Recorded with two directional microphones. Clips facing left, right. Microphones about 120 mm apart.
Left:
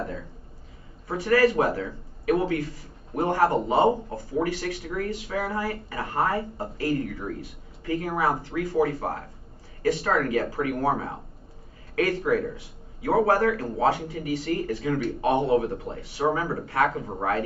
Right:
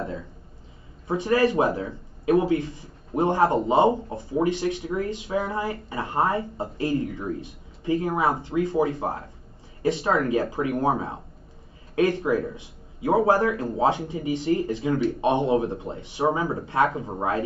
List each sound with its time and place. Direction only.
1.0 s speech: 20° right (ahead or behind)